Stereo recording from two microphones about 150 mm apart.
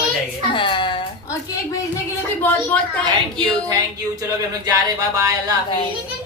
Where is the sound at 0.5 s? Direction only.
35° left (ahead or behind).